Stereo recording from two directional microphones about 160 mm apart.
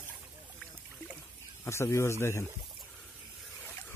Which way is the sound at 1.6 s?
15° left (ahead or behind).